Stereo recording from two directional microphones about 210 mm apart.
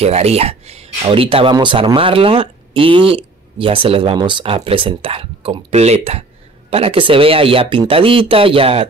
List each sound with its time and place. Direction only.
0.0 s speech: 30° right (ahead or behind)